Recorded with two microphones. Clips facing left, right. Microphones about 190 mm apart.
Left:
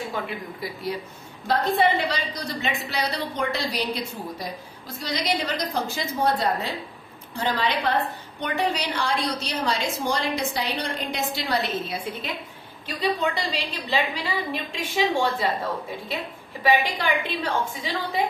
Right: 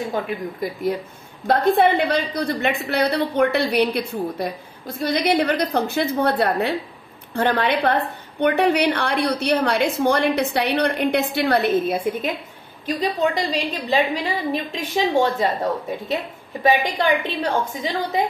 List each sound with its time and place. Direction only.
0.1 s a woman's voice: 50° right (ahead or behind)
16.6 s a woman's voice: 40° right (ahead or behind)